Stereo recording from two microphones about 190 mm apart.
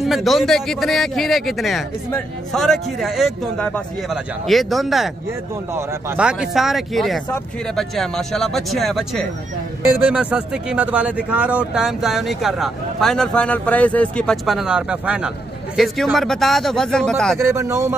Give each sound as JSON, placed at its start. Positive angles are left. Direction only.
{"t": 0.0, "sound": "speech", "side_deg": 0}
{"t": 9.8, "sound": "speech", "side_deg": -10}
{"t": 17.4, "sound": "speech", "side_deg": -15}